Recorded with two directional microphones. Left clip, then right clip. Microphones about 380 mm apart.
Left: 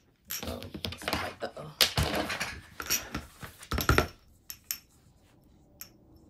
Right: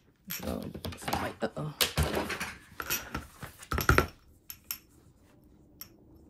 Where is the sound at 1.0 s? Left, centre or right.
Centre.